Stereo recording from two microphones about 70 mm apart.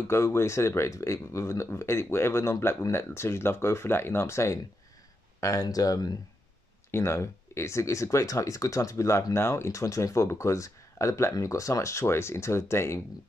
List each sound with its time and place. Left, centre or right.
0.1 s speech: left
5.4 s speech: left
6.9 s speech: left